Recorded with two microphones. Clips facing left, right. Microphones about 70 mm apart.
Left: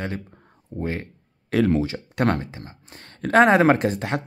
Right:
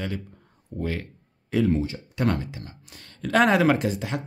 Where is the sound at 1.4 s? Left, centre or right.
Left.